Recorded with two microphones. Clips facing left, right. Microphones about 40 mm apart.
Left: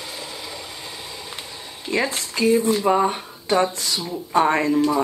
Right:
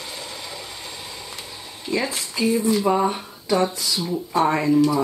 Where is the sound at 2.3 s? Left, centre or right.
Left.